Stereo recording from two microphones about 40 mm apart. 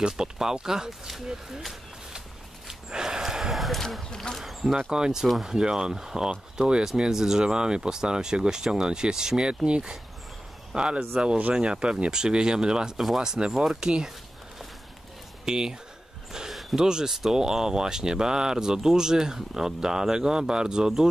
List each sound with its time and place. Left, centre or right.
0.0 s speech: centre
2.9 s gasp: centre
3.5 s basketball bounce: centre
4.1 s speech: centre
4.4 s speech: centre
4.9 s speech: centre
5.2 s speech: centre
15.4 s speech: centre